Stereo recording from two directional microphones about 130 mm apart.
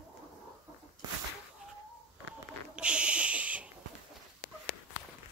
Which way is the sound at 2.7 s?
10° right (ahead or behind).